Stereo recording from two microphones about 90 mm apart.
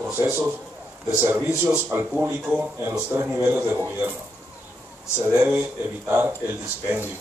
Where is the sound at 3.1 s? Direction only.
20° right (ahead or behind).